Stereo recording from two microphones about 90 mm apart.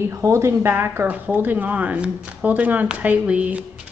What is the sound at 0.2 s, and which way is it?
Speech, 30° right (ahead or behind).